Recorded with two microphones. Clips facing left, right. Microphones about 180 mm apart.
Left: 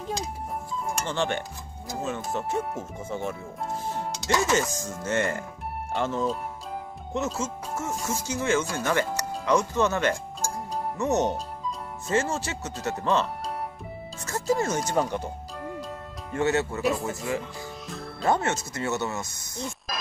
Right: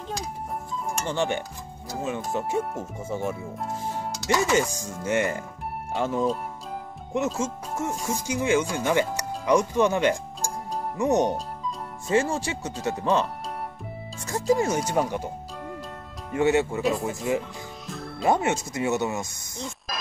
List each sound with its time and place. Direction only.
1.0 s speech: 10° right (ahead or behind)
7.7 s speech: 15° right (ahead or behind)
14.5 s speech: 10° right (ahead or behind)
17.8 s music: centre (ahead or behind)
18.2 s speech: 15° right (ahead or behind)
19.9 s music: centre (ahead or behind)